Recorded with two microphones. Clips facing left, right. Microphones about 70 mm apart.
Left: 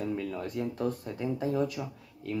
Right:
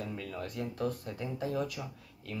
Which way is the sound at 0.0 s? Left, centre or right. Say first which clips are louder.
Left 6 dB; centre.